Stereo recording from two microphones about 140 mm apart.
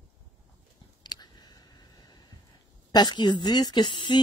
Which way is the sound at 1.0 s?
30° left (ahead or behind).